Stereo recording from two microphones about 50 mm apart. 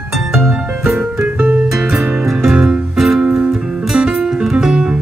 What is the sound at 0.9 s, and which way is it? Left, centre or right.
Music, right.